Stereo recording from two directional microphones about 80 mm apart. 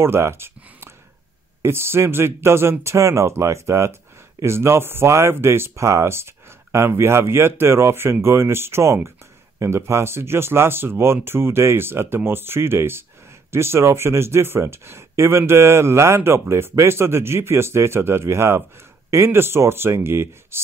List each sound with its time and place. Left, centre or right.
0.0 s speech: right